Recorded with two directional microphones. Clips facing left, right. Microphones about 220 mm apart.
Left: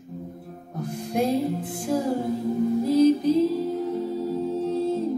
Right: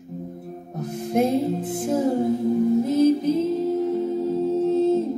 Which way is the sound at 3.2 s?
20° right (ahead or behind).